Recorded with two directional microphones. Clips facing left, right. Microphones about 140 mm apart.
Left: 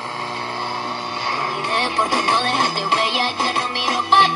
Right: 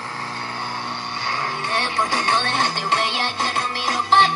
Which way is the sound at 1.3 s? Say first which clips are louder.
Left 2 dB; 20° left (ahead or behind).